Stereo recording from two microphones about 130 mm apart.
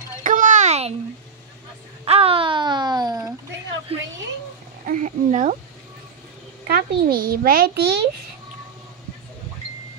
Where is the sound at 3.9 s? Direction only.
50° right (ahead or behind).